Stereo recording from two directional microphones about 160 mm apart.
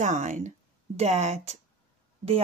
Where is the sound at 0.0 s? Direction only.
50° right (ahead or behind).